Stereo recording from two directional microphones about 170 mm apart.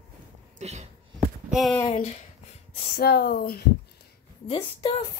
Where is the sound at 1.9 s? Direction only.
40° left (ahead or behind).